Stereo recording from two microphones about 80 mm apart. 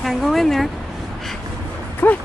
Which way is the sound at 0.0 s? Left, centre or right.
Centre.